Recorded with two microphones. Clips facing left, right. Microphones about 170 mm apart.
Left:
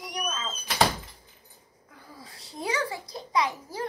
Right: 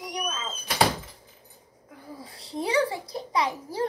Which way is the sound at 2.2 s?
30° right (ahead or behind).